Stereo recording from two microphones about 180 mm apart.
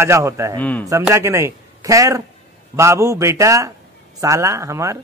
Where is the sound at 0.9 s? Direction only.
15° right (ahead or behind).